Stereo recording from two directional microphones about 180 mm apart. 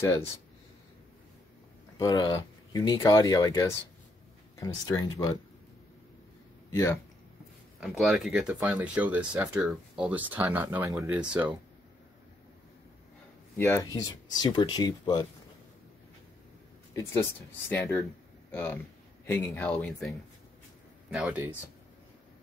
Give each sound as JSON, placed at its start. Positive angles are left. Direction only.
{"t": 2.0, "sound": "speech", "side_deg": 20}
{"t": 6.7, "sound": "speech", "side_deg": 15}
{"t": 8.0, "sound": "speech", "side_deg": 0}
{"t": 13.6, "sound": "speech", "side_deg": 15}
{"t": 16.9, "sound": "speech", "side_deg": 15}
{"t": 21.1, "sound": "speech", "side_deg": -10}